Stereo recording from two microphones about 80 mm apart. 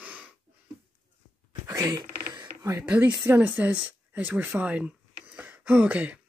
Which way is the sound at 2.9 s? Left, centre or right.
Centre.